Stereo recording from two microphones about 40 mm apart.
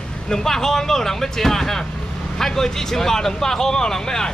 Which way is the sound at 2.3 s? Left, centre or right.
Centre.